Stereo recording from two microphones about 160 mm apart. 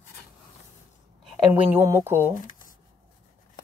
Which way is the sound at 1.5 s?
15° right (ahead or behind).